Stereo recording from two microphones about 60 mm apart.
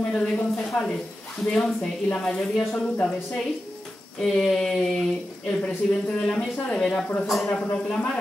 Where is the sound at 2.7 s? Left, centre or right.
Centre.